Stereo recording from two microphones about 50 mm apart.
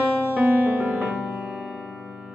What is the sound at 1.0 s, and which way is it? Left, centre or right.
Music, centre.